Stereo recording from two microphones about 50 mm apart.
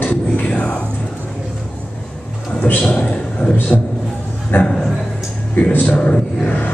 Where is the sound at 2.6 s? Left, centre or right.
Left.